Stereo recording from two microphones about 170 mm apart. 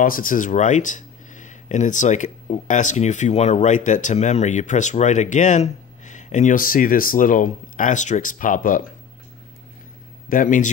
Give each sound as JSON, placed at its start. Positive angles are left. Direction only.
{"t": 0.0, "sound": "speech", "side_deg": 55}
{"t": 10.3, "sound": "speech", "side_deg": 50}